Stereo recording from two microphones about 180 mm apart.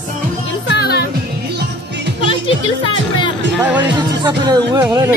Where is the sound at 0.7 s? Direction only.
65° left (ahead or behind).